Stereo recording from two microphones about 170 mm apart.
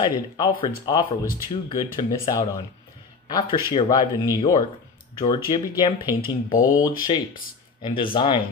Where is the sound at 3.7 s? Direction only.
25° left (ahead or behind).